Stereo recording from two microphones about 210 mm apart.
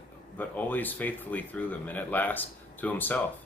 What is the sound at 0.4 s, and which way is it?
Speech, 10° left (ahead or behind).